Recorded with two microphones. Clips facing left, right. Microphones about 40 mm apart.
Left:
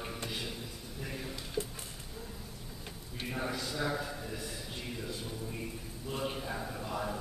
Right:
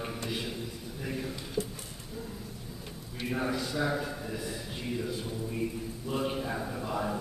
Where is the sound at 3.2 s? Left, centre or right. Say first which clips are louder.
Right 5 dB; centre.